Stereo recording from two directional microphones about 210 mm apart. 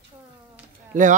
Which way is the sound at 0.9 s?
40° right (ahead or behind).